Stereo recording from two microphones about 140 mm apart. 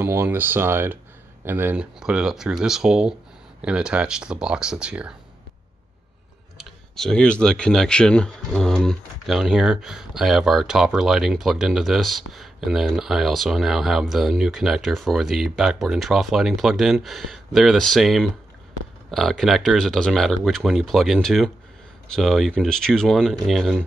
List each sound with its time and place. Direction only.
0.0 s speech: 20° right (ahead or behind)
6.6 s speech: 5° left (ahead or behind)